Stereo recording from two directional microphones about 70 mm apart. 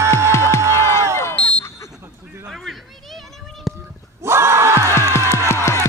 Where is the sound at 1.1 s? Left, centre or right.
Left.